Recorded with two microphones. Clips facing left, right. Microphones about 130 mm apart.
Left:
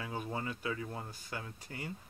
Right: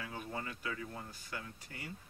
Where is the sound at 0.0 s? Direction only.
25° left (ahead or behind).